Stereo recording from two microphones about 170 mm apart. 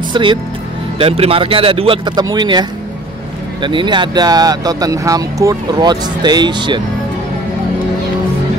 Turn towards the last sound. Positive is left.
turn(degrees=-25)  # may be behind; listen again after turning